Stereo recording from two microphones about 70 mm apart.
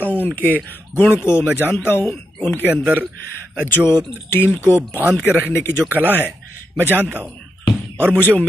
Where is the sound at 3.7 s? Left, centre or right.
Left.